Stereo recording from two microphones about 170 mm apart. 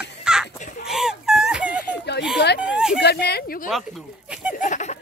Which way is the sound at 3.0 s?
75° left (ahead or behind).